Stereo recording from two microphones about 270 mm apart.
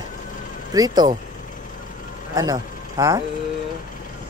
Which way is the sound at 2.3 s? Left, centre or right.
Centre.